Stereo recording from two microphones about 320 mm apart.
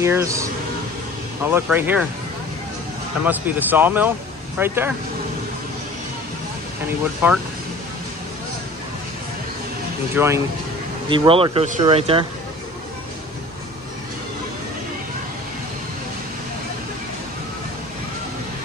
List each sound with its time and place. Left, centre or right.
0.0 s speech: centre
3.3 s speech: centre
7.2 s speech: centre
10.1 s speech: centre